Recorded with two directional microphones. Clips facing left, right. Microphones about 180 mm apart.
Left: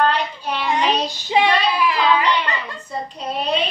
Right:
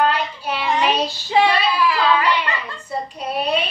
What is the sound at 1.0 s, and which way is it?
Child singing, 20° left (ahead or behind).